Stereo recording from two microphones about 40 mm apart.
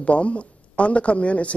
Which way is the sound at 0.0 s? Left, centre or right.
Left.